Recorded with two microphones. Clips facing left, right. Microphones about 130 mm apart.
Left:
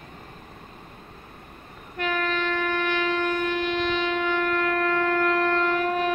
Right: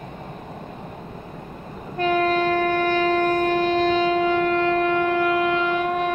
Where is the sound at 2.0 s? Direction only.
35° right (ahead or behind).